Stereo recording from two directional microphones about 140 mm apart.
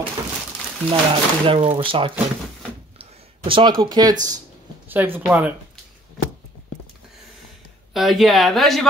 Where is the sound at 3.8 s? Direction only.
30° right (ahead or behind).